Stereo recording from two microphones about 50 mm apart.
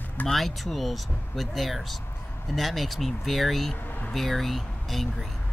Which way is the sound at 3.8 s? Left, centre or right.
Left.